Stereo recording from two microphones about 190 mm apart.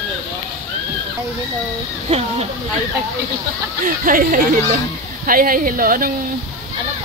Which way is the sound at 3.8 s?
45° right (ahead or behind).